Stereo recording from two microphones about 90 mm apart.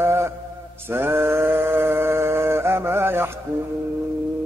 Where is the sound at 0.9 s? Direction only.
25° right (ahead or behind).